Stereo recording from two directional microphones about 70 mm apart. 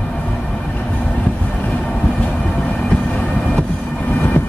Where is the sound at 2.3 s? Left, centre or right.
Centre.